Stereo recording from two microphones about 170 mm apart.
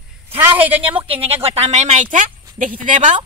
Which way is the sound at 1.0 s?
35° right (ahead or behind).